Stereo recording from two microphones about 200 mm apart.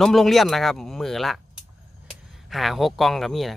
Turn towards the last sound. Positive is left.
turn(degrees=0)  # may be behind; listen again after turning